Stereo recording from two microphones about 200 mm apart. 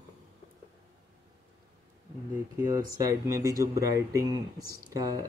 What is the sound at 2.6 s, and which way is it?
Speech, 20° right (ahead or behind).